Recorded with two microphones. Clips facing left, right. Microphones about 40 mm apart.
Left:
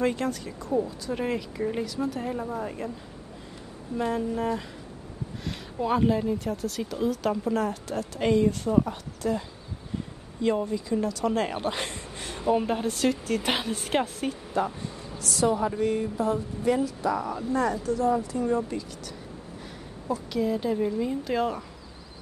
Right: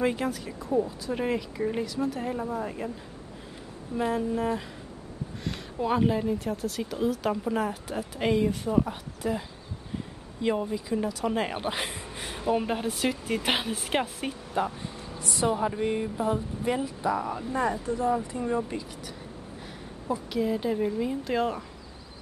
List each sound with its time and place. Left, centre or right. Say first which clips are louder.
0.0 s speech: left 1 dB; centre
3.9 s speech: even; centre
20.2 s speech: left 1 dB; centre